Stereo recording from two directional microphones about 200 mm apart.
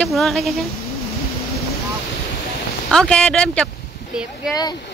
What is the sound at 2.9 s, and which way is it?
Speech, 5° left (ahead or behind).